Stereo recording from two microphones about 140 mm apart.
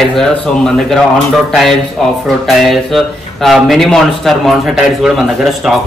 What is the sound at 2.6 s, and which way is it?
A man's voice, centre (ahead or behind).